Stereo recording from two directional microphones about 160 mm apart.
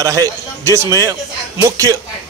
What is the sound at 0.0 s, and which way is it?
A man's voice, 20° right (ahead or behind).